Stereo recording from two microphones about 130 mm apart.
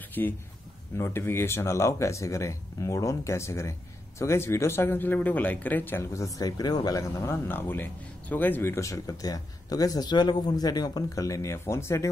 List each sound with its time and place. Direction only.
0.2 s speech: 15° left (ahead or behind)